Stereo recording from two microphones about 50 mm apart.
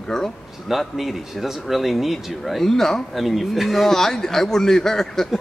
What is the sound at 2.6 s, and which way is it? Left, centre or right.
Speech, centre.